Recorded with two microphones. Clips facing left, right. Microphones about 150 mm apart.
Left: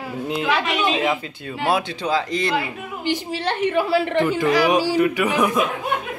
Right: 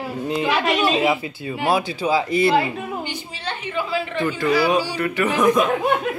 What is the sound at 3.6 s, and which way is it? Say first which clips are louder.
Speech: left 5 dB; 70° left (ahead or behind).